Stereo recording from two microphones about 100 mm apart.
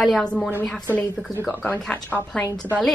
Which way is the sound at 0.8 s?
15° left (ahead or behind).